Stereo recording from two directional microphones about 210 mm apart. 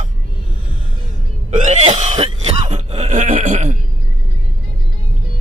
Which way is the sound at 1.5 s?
35° right (ahead or behind).